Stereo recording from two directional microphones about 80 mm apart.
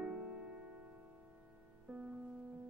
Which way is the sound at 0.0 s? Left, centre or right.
Centre.